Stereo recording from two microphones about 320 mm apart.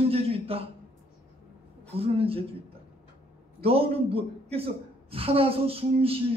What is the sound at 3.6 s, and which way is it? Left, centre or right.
A woman's voice, centre.